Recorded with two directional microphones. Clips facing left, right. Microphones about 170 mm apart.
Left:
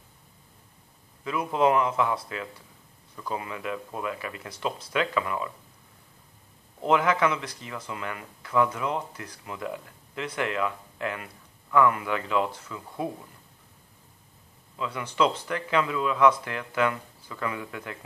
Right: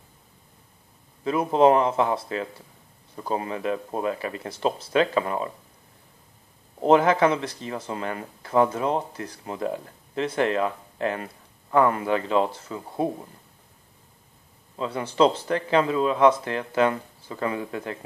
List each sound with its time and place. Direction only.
1.2 s speech: 30° right (ahead or behind)
6.8 s speech: 35° right (ahead or behind)
14.8 s speech: 35° right (ahead or behind)